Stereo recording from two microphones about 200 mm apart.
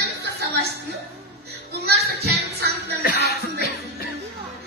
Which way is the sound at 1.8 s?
55° right (ahead or behind).